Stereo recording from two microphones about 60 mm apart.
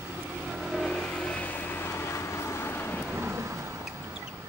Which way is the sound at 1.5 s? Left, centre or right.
Left.